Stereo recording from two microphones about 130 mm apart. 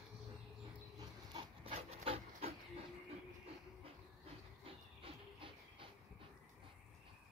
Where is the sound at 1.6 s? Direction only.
50° right (ahead or behind).